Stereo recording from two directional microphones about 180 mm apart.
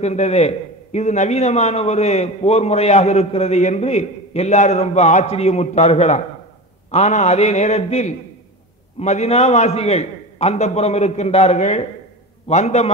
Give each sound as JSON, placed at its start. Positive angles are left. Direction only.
{"t": 0.0, "sound": "a man's voice", "side_deg": 40}